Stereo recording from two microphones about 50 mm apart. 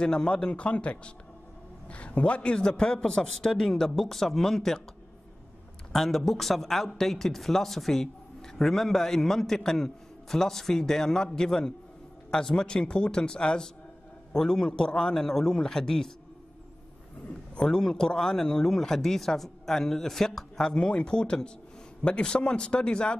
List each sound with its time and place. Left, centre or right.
0.0 s speech: centre
5.9 s a man's voice: centre
17.6 s speech: centre